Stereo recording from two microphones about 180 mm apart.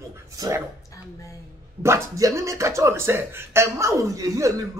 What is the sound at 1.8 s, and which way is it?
Speech, 15° right (ahead or behind).